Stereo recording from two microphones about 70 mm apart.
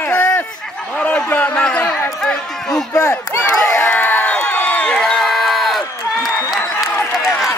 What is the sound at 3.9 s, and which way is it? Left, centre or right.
Crowd, left.